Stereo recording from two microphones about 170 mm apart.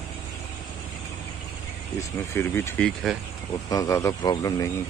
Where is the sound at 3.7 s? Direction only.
20° left (ahead or behind).